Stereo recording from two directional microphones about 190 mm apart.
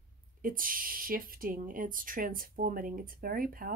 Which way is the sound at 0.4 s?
45° right (ahead or behind).